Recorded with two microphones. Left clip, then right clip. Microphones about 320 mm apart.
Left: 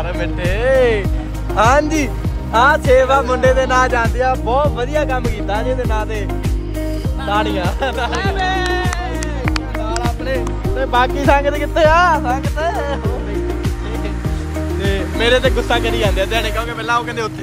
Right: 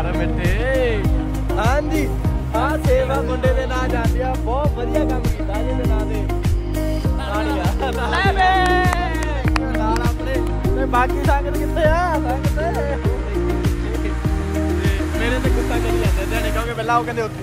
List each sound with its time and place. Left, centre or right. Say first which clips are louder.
0.2 s music: left 4 dB; centre; by 5.2 s left
7.3 s music: left 5 dB; left
8.1 s music: right 2 dB; right
10.3 s music: left 2 dB; left
15.1 s speech: left 10 dB; centre
16.3 s speech: left 3 dB; centre